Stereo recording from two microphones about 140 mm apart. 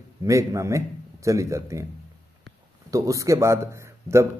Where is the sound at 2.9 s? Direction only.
20° right (ahead or behind).